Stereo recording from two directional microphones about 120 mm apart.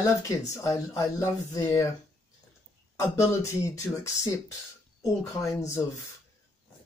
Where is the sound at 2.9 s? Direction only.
25° left (ahead or behind).